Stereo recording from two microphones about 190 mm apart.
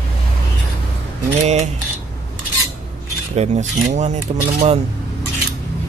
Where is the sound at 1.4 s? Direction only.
35° right (ahead or behind).